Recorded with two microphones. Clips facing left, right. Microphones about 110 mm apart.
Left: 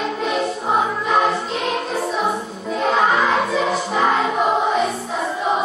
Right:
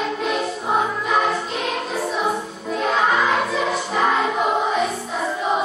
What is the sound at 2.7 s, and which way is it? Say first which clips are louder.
Music: left 2 dB; centre (ahead or behind).